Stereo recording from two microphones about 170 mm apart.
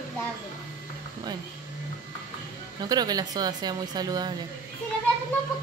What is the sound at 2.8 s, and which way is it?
A woman's voice, 25° right (ahead or behind).